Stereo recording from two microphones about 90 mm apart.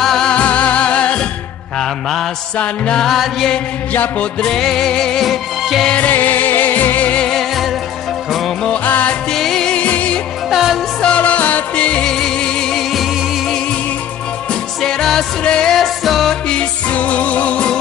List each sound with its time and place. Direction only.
0.0 s music: 5° left (ahead or behind)
1.8 s mantra: 5° left (ahead or behind)
2.6 s music: 10° left (ahead or behind)
3.9 s music: 15° left (ahead or behind); by 5.9 s centre (ahead or behind)
5.9 s music: 15° left (ahead or behind)
8.7 s music: 15° left (ahead or behind)
9.3 s music: 5° left (ahead or behind)
10.5 s music: 5° right (ahead or behind)
11.0 s music: 15° left (ahead or behind)